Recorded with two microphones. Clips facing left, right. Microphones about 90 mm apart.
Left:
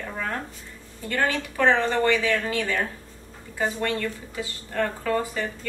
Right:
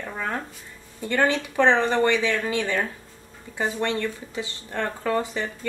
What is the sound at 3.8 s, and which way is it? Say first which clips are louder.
Speech: right 1 dB; 25° right (ahead or behind).